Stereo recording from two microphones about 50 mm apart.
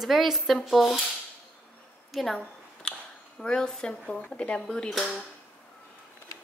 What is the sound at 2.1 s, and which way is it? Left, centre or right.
Speech, centre.